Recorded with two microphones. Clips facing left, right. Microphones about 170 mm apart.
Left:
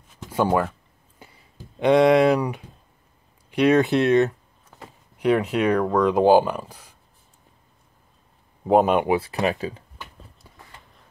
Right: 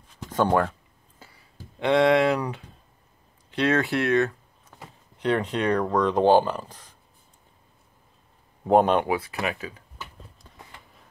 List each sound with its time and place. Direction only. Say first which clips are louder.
0.3 s speech: left 1 dB; 5° left (ahead or behind)
1.2 s a sound: left 2 dB; 20° left (ahead or behind)
3.4 s speech: left 6 dB; 15° left (ahead or behind)
5.2 s speech: left 4 dB; 10° left (ahead or behind)
8.6 s speech: left 1 dB; 5° left (ahead or behind)
9.0 s speech: left 5 dB; 30° left (ahead or behind)